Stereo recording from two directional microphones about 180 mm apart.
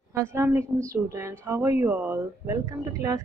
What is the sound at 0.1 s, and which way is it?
Speech, 15° right (ahead or behind).